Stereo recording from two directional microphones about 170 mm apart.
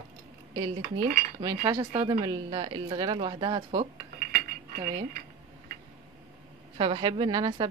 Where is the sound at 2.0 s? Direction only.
25° right (ahead or behind).